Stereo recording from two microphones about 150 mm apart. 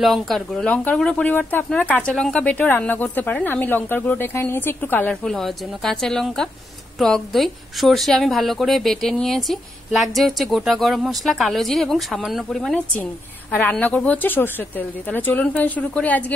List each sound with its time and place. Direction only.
0.0 s a woman's voice: centre (ahead or behind)